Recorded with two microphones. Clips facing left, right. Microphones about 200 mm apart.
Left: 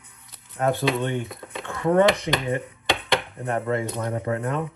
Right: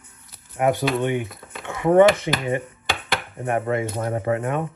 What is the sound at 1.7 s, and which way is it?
Speech, 20° right (ahead or behind).